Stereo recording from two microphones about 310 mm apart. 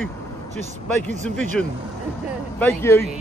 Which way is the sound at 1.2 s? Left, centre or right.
Centre.